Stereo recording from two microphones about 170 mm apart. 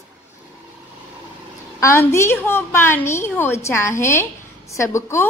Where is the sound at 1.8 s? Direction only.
15° left (ahead or behind).